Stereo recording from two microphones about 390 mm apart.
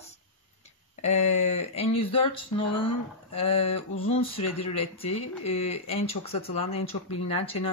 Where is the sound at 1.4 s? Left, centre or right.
Centre.